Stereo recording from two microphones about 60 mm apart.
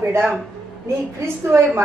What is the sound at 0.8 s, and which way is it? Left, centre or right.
Speech, right.